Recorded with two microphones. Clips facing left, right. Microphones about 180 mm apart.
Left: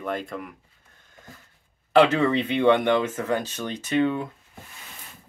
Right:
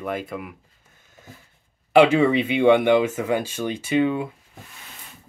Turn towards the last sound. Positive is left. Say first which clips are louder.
# right 2 dB
turn(degrees=-10)  # may be behind; listen again after turning